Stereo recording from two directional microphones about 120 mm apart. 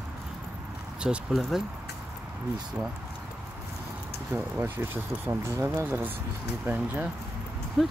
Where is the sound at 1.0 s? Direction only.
5° right (ahead or behind).